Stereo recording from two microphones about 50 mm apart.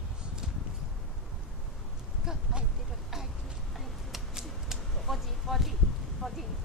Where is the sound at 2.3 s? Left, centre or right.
Centre.